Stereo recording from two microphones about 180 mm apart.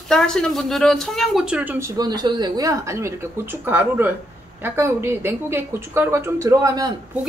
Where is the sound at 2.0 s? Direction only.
20° right (ahead or behind).